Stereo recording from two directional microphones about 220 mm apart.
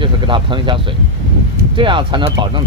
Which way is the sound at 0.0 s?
20° right (ahead or behind).